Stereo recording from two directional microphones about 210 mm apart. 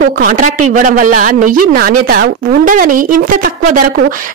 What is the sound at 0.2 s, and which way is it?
A woman's voice, 40° right (ahead or behind).